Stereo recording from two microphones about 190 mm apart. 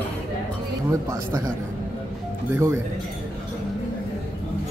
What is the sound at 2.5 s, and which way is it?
Speech, 15° right (ahead or behind).